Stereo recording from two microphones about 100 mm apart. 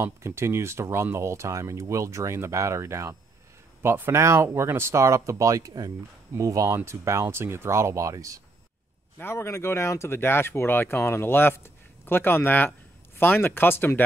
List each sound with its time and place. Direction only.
0.0 s speech: 25° right (ahead or behind)
9.2 s speech: 25° left (ahead or behind)